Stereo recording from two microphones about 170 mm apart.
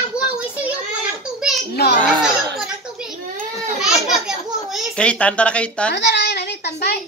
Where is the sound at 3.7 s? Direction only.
Centre (ahead or behind).